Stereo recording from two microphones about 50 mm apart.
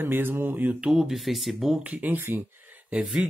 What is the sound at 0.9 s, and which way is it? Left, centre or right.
Speech, centre.